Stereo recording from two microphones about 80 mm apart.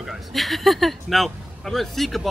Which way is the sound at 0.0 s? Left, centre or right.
Centre.